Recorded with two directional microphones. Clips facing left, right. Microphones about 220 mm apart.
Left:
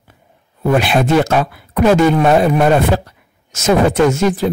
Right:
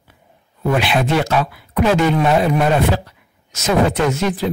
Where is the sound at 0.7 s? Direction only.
45° left (ahead or behind).